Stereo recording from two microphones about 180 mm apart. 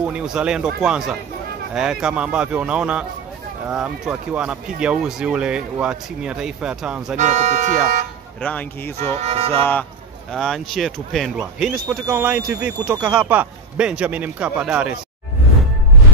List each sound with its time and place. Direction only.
0.0 s speech: 5° right (ahead or behind)
7.2 s speech: 40° right (ahead or behind)
8.4 s a man's voice: 5° left (ahead or behind)
9.2 s speech: 35° right (ahead or behind)
9.5 s a man's voice: 10° left (ahead or behind); by 15.0 s 5° right (ahead or behind)